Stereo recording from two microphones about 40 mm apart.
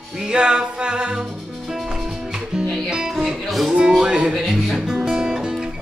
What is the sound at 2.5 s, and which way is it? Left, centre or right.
Music, centre.